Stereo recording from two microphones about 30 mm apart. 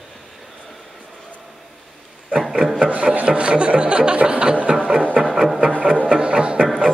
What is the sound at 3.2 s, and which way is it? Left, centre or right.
Speech, right.